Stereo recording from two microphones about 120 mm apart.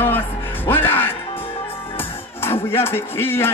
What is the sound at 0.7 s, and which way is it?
Music, 15° left (ahead or behind).